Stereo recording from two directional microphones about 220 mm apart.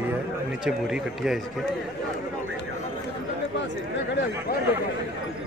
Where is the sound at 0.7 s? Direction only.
5° right (ahead or behind).